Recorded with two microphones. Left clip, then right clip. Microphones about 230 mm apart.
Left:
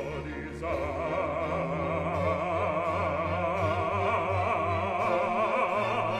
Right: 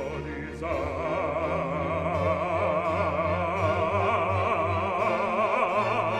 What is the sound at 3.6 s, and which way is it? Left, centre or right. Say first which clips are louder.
Music: right 3 dB; right.